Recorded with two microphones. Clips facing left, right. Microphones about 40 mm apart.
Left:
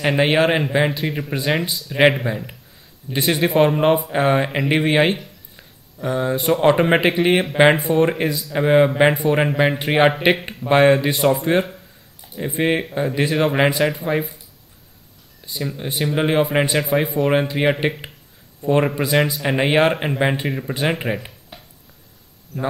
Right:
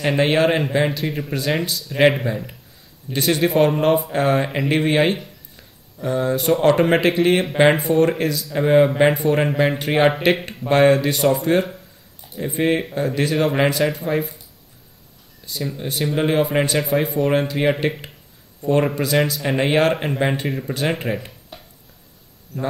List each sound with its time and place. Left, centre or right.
0.0 s speech: centre
1.6 s speech: centre
7.7 s speech: centre
8.0 s speech: centre
11.6 s a sound: centre
12.4 s speech: centre
15.4 s speech: centre
21.3 s a sound: centre
22.5 s speech: centre